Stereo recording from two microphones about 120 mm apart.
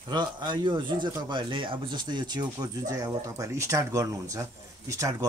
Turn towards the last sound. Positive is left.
turn(degrees=-25)  # may be behind; listen again after turning